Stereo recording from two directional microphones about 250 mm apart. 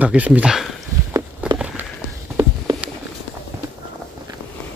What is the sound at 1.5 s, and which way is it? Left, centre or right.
Walk, centre.